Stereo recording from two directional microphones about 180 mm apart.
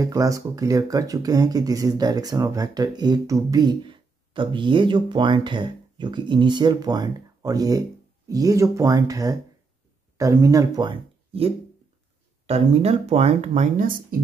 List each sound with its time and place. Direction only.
0.0 s speech: 20° right (ahead or behind); by 13.9 s 45° right (ahead or behind)